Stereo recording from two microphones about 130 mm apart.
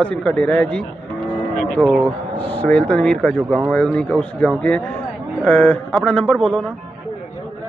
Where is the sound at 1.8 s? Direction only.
5° right (ahead or behind).